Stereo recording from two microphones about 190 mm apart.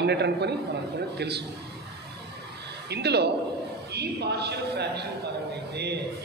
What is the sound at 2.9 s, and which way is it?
A man's voice, 60° right (ahead or behind).